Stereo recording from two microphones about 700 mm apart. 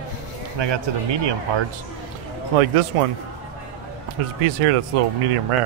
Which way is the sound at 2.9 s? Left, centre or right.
Right.